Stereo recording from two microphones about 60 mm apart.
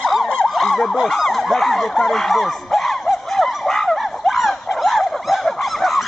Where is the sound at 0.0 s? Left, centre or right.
Centre.